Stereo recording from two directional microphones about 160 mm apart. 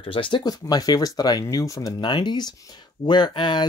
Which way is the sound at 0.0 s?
30° left (ahead or behind).